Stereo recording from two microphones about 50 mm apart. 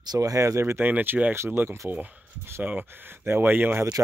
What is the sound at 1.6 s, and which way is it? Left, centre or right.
Speech, right.